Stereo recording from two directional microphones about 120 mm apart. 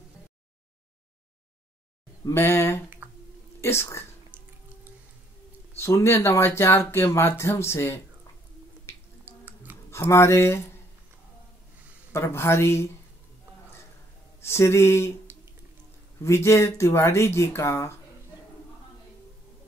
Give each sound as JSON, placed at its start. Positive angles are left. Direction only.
{"t": 2.2, "sound": "speech", "side_deg": 20}
{"t": 3.0, "sound": "a sound", "side_deg": -15}
{"t": 3.6, "sound": "speech", "side_deg": 20}
{"t": 5.8, "sound": "speech", "side_deg": 25}
{"t": 8.9, "sound": "finger snapping", "side_deg": 25}
{"t": 9.2, "sound": "a sound", "side_deg": -15}
{"t": 9.8, "sound": "speech", "side_deg": 20}
{"t": 12.1, "sound": "speech", "side_deg": 20}
{"t": 14.4, "sound": "speech", "side_deg": 20}
{"t": 16.2, "sound": "speech", "side_deg": 25}